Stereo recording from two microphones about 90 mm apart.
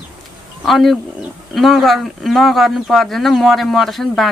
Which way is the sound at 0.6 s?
Centre (ahead or behind).